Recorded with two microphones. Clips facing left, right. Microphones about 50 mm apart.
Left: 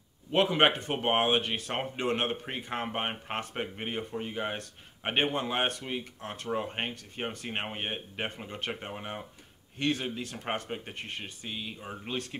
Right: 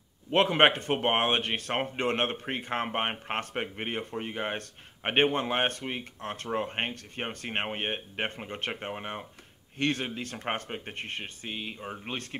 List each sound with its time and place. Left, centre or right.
0.3 s speech: right
9.8 s speech: right
11.8 s speech: centre
12.1 s speech: right